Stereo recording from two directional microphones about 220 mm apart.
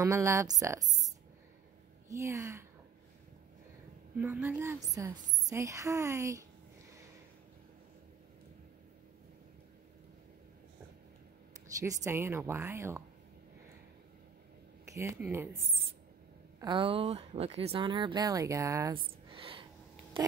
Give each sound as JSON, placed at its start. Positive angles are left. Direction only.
{"t": 0.0, "sound": "a woman's voice", "side_deg": -15}
{"t": 4.2, "sound": "a woman's voice", "side_deg": -10}
{"t": 11.8, "sound": "a woman's voice", "side_deg": -15}
{"t": 14.9, "sound": "a woman's voice", "side_deg": -10}
{"t": 19.3, "sound": "a sound", "side_deg": -25}